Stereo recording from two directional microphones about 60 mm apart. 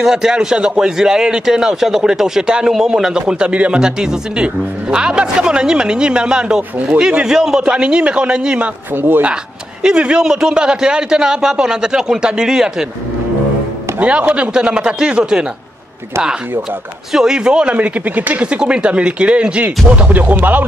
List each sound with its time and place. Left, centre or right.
0.0 s a man's voice: centre
8.9 s speech: right
9.8 s a man's voice: centre
13.9 s a man's voice: centre
17.1 s speech: centre; by 20.6 s right